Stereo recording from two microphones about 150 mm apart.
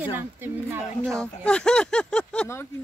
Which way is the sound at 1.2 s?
5° left (ahead or behind).